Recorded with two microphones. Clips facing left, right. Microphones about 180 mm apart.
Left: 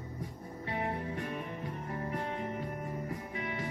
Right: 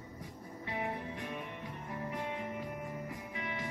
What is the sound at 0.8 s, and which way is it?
Music, 40° left (ahead or behind).